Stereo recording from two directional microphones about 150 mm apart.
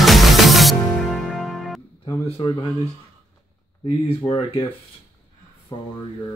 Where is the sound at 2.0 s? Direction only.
30° left (ahead or behind).